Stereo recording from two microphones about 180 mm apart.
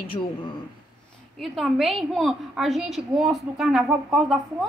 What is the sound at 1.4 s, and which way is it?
A woman's voice, centre (ahead or behind).